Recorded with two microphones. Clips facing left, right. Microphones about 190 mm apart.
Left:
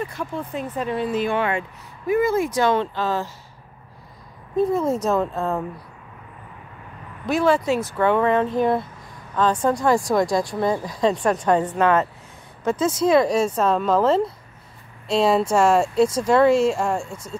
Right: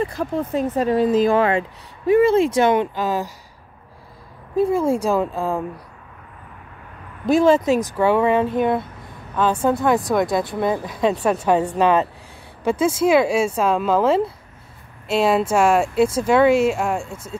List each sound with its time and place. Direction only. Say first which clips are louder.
0.0 s speech: right 6 dB; 35° right (ahead or behind); by 3.3 s 15° right (ahead or behind)
4.7 s speech: right 2 dB; 10° right (ahead or behind)
7.3 s speech: right 4 dB; 20° right (ahead or behind)
8.5 s speech: right 1 dB; centre (ahead or behind)